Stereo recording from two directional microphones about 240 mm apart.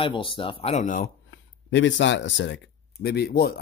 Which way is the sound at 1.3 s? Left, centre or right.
Left.